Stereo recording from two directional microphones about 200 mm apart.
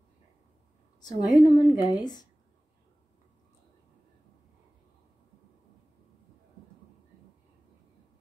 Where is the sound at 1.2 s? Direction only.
20° left (ahead or behind).